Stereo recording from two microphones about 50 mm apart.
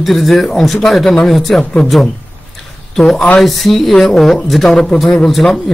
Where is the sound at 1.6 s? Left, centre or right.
Centre.